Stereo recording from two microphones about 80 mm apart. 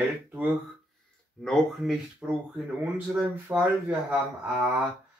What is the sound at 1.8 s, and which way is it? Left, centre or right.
Speech, centre.